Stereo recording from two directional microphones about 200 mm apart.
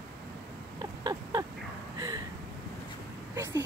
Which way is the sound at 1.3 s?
20° right (ahead or behind).